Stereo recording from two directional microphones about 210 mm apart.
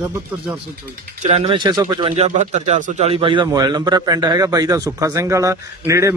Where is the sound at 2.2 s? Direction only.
30° right (ahead or behind); by 6.1 s 15° right (ahead or behind).